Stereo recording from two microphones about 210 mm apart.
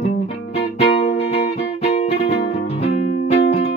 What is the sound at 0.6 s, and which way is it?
Music, 30° left (ahead or behind).